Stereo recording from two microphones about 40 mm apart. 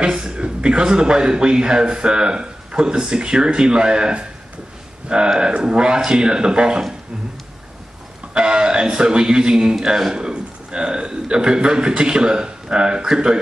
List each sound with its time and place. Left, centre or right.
0.0 s a man's voice: right
8.4 s a man's voice: centre
10.1 s a man's voice: right